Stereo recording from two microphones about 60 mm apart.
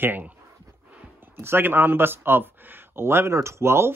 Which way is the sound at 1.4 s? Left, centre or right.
Right.